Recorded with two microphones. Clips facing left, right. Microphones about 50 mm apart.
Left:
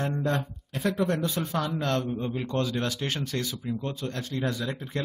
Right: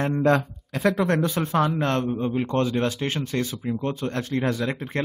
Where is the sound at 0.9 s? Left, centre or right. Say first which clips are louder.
Right 4 dB; right.